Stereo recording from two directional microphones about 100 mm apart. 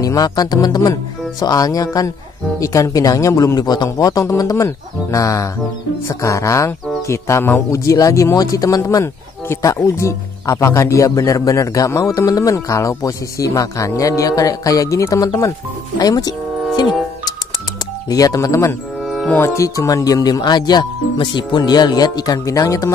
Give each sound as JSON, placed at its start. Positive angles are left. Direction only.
{"t": 0.0, "sound": "speech", "side_deg": 40}
{"t": 16.0, "sound": "music", "side_deg": 40}
{"t": 18.0, "sound": "speech", "side_deg": 40}
{"t": 19.0, "sound": "music", "side_deg": 0}
{"t": 19.3, "sound": "speech", "side_deg": 30}